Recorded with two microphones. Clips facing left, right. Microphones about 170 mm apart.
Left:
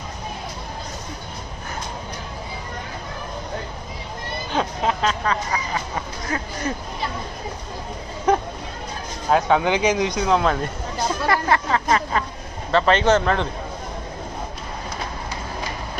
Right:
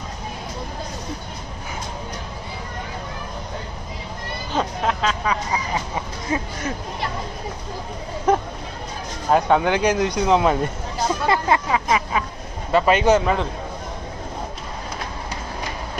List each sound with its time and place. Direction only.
4.5 s music: centre (ahead or behind)
5.5 s duck: 15° right (ahead or behind)
8.3 s hubbub: 5° right (ahead or behind)
9.3 s speech: centre (ahead or behind); by 11.8 s 20° right (ahead or behind)
11.9 s speech: 5° right (ahead or behind)